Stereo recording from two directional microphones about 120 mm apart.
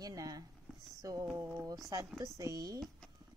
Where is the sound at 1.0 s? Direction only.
30° right (ahead or behind).